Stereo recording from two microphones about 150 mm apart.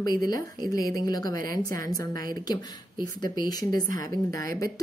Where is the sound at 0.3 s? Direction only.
25° left (ahead or behind).